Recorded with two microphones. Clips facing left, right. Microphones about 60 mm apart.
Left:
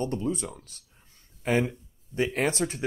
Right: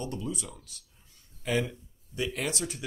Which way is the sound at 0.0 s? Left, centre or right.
Left.